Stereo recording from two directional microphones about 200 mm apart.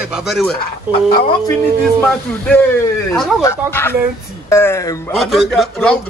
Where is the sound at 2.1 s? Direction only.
5° left (ahead or behind).